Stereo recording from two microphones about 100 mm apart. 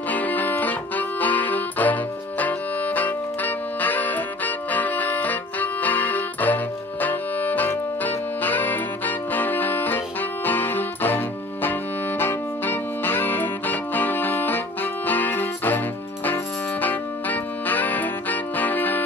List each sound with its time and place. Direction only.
0.1 s music: 15° left (ahead or behind)
16.8 s music: 15° left (ahead or behind)